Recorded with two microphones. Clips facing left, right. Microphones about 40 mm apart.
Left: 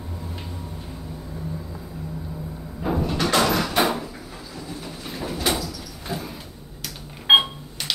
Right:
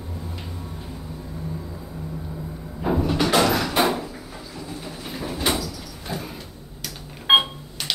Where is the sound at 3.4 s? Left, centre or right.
Centre.